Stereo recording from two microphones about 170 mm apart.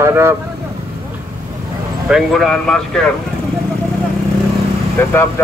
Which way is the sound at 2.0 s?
Centre (ahead or behind).